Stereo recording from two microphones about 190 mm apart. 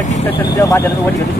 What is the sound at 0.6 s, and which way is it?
Speech, 15° left (ahead or behind).